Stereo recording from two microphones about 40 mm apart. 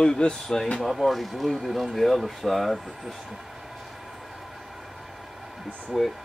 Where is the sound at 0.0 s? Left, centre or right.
Centre.